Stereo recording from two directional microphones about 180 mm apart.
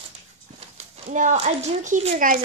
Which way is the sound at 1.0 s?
40° right (ahead or behind).